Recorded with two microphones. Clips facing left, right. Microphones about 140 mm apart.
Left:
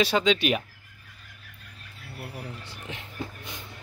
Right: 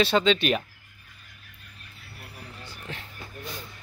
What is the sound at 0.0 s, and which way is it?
Speech, 10° left (ahead or behind).